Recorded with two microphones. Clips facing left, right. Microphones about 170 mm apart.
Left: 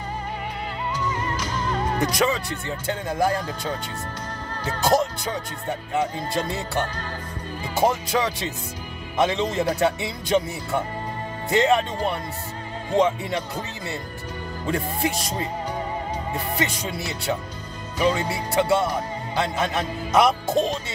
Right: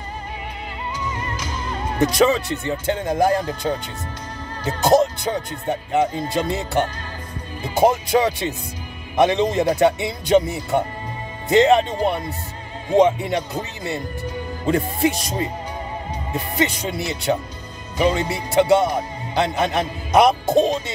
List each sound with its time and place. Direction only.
2.0 s speech: 25° right (ahead or behind)
9.1 s speech: 15° right (ahead or behind)
16.5 s speech: 20° right (ahead or behind)